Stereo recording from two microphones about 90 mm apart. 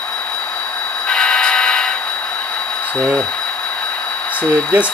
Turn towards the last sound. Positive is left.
turn(degrees=15)  # may be behind; listen again after turning